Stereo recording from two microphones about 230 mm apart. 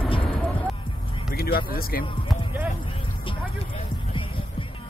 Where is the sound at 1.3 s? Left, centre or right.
Left.